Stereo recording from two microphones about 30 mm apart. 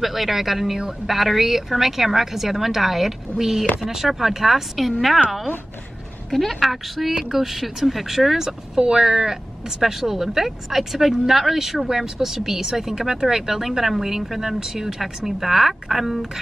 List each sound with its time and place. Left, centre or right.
0.0 s speech: centre
1.1 s speech: centre
6.5 s a woman's voice: centre